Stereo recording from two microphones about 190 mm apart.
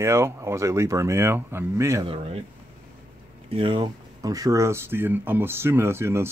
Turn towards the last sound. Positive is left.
turn(degrees=-15)  # may be behind; listen again after turning